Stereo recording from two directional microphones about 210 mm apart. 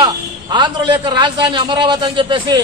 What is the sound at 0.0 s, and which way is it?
A man's voice, 20° right (ahead or behind).